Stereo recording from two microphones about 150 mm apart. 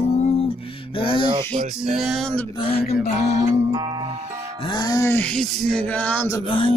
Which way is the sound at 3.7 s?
30° right (ahead or behind).